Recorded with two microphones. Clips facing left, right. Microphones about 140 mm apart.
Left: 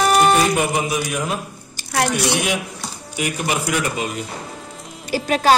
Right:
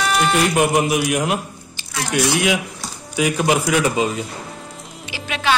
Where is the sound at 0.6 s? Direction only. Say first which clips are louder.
Right 4 dB; 70° right (ahead or behind).